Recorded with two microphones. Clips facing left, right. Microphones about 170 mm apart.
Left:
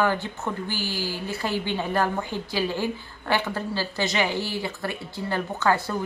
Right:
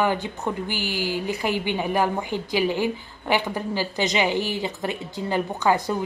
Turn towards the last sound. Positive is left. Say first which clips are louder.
# right 2 dB
turn(degrees=-15)  # may be behind; listen again after turning